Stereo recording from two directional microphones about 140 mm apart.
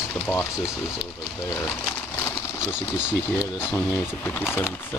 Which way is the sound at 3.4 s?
15° left (ahead or behind).